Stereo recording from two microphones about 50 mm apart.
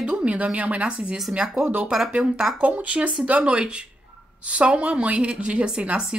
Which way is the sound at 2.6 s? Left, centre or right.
Right.